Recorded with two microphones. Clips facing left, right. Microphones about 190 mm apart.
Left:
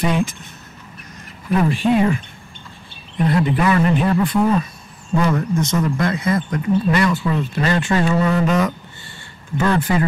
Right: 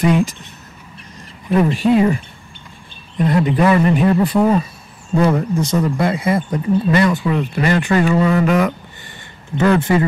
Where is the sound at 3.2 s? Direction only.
40° right (ahead or behind).